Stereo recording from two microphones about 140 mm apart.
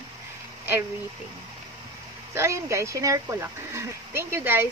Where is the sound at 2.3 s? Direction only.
20° right (ahead or behind).